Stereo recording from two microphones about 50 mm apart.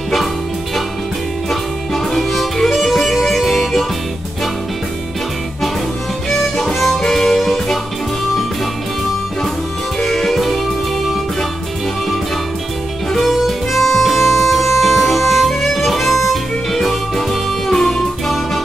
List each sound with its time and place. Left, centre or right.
2.0 s music: centre
6.3 s harmonica: centre
9.9 s music: centre
13.2 s music: centre